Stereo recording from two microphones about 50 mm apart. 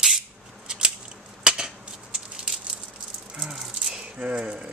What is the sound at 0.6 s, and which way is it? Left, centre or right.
Scissors, centre.